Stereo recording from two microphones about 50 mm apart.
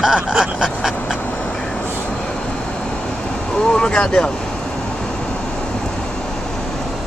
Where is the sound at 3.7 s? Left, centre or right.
Centre.